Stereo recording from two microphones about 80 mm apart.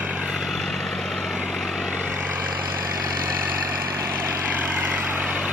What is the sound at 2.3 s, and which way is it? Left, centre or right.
Vehicle, centre.